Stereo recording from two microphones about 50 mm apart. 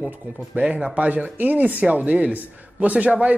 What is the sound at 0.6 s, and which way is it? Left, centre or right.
Speech, right.